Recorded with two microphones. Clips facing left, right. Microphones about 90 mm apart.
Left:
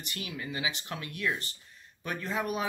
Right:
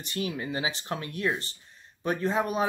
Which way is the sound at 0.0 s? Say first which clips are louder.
Right 7 dB; 30° right (ahead or behind).